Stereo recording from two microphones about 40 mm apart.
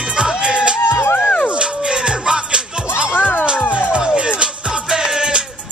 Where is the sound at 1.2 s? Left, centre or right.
Left.